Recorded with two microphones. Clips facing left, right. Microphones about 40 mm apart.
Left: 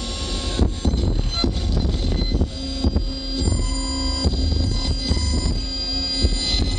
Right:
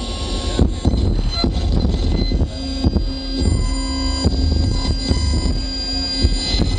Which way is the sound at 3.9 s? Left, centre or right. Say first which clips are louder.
Right 4 dB; right.